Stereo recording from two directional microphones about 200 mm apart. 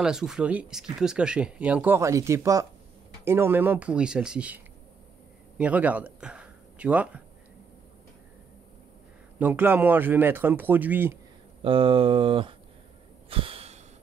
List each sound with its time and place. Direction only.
0.0 s speech: 5° right (ahead or behind)
5.6 s speech: 5° right (ahead or behind)
9.4 s speech: 10° right (ahead or behind)
11.6 s speech: 25° right (ahead or behind)
13.3 s a sound: 30° right (ahead or behind)